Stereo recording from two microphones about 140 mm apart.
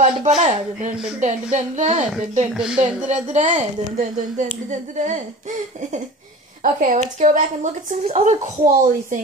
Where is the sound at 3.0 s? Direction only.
60° right (ahead or behind).